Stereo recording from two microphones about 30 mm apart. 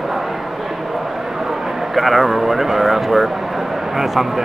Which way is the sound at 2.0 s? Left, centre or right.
Centre.